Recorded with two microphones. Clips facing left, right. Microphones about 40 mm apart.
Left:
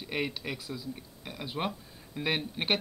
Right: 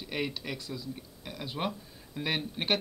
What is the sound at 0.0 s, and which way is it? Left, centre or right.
Speech, centre.